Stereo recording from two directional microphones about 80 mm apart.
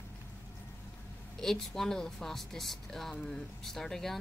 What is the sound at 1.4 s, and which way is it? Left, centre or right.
A woman's voice, centre.